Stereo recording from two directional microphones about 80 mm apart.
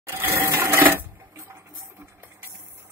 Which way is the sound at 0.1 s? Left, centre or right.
Right.